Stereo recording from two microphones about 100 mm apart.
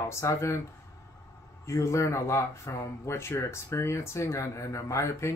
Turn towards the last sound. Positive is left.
turn(degrees=30)  # may be behind; listen again after turning